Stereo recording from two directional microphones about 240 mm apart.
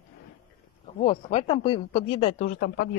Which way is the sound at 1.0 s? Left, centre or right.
Left.